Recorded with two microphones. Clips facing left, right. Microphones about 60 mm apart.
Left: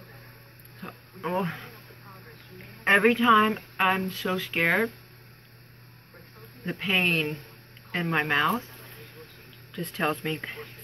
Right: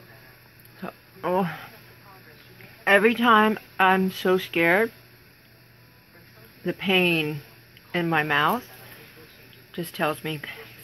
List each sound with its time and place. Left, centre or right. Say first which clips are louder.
0.7 s a sound: right 5 dB; centre
2.8 s speech: right 2 dB; centre
6.6 s speech: right 4 dB; centre
9.7 s speech: right 2 dB; centre